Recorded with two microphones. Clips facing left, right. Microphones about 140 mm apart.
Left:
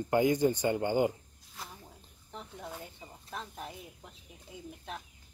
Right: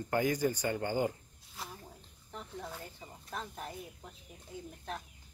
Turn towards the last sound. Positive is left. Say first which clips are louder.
# right 2 dB
turn(degrees=5)  # may be behind; listen again after turning